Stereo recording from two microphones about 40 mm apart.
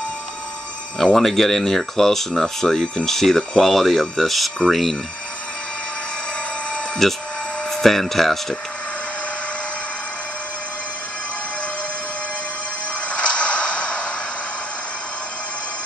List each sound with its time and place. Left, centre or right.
0.9 s speech: centre
7.0 s speech: centre
13.1 s a sound: left